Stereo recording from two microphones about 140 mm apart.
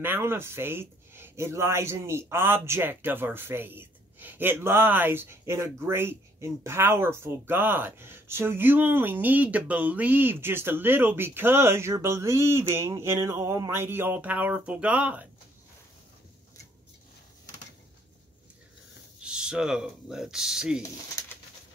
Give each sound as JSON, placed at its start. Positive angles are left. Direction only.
{"t": 0.0, "sound": "speech", "side_deg": -15}
{"t": 19.2, "sound": "speech", "side_deg": -5}
{"t": 20.8, "sound": "speech", "side_deg": 20}